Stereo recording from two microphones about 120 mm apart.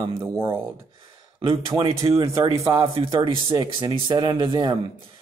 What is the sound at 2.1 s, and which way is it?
Speech, 25° right (ahead or behind).